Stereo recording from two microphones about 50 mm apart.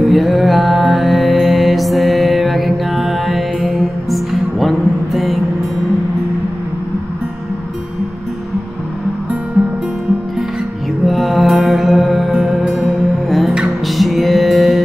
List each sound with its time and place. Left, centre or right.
0.0 s music: centre
9.6 s music: right
11.1 s music: centre
12.4 s music: centre
13.8 s music: centre